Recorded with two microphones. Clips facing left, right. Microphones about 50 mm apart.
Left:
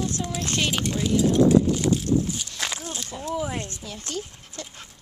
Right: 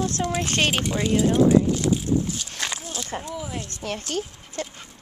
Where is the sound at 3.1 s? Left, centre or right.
Right.